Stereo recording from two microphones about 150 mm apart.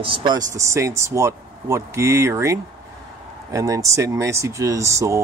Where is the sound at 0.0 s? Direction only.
35° right (ahead or behind).